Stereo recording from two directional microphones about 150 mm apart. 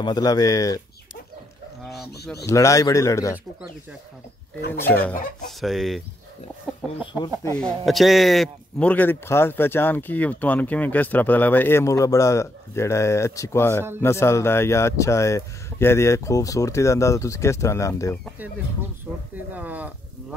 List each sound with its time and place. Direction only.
0.0 s speech: 25° left (ahead or behind)
2.4 s speech: 20° left (ahead or behind)
4.7 s a man's voice: 15° left (ahead or behind)
5.6 s speech: centre (ahead or behind)
7.5 s a man's voice: 5° left (ahead or behind); by 18.1 s 20° left (ahead or behind)
19.3 s speech: 10° right (ahead or behind)